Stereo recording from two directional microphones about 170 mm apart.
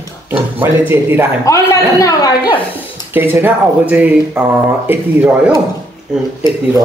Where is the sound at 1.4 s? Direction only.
20° left (ahead or behind).